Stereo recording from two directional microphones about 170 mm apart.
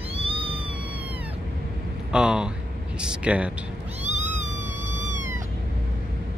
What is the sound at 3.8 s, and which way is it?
Cat, 40° right (ahead or behind).